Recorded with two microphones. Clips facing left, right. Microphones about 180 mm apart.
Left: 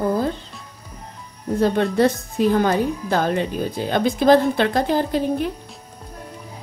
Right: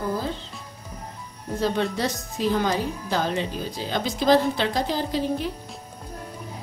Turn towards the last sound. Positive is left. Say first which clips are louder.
# left 4 dB
turn(degrees=55)  # may be behind; listen again after turning